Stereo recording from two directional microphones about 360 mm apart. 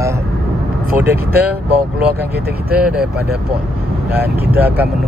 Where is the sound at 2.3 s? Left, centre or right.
Right.